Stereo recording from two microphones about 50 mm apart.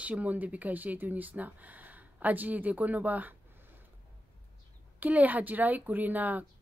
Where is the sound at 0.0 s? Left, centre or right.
Right.